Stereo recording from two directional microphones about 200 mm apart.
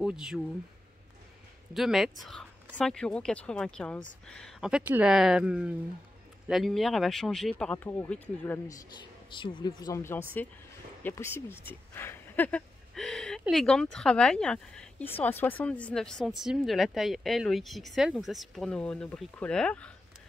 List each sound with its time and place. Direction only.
0.0 s speech: 5° right (ahead or behind)
1.7 s speech: centre (ahead or behind)